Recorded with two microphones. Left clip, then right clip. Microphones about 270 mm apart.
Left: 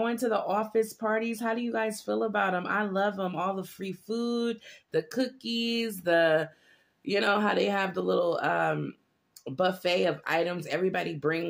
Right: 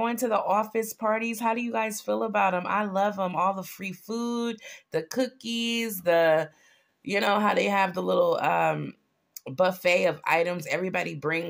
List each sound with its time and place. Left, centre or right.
0.0 s speech: right